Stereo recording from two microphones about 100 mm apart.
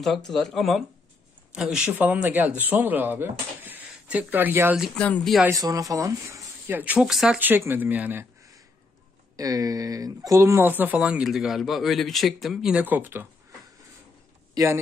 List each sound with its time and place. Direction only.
0.0 s speech: centre (ahead or behind); by 4.7 s 20° right (ahead or behind)
4.9 s speech: 15° left (ahead or behind)
5.5 s speech: 35° right (ahead or behind)
6.7 s speech: 15° right (ahead or behind)
7.1 s speech: 5° right (ahead or behind)
7.3 s speech: 20° right (ahead or behind)
9.4 s speech: 40° right (ahead or behind); by 12.7 s centre (ahead or behind)
12.7 s speech: 15° right (ahead or behind)
14.5 s speech: 35° right (ahead or behind)